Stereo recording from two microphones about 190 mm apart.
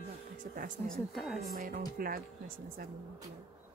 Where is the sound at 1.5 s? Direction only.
50° right (ahead or behind).